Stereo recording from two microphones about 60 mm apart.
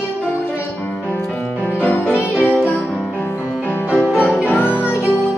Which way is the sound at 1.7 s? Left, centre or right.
Left.